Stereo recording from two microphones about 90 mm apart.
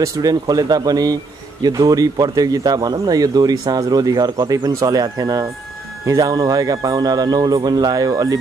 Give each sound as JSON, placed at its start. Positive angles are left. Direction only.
{"t": 0.0, "sound": "speech", "side_deg": -40}